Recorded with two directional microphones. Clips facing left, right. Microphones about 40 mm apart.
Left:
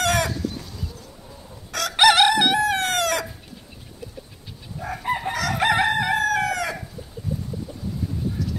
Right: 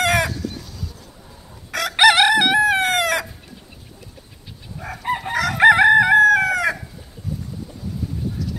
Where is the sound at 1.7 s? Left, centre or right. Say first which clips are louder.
Right 2 dB; centre.